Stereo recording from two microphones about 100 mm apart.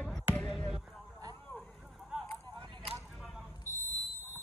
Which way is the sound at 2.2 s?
55° right (ahead or behind).